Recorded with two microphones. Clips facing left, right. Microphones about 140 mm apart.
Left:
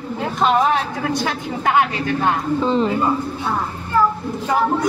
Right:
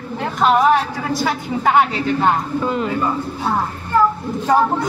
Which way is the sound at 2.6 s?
30° left (ahead or behind).